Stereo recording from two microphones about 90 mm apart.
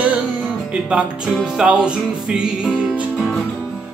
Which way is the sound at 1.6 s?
10° right (ahead or behind).